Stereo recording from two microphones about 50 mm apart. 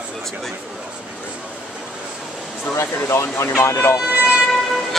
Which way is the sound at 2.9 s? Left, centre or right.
Left.